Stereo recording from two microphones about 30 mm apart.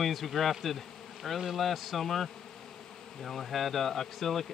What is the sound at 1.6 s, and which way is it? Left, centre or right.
Speech, centre.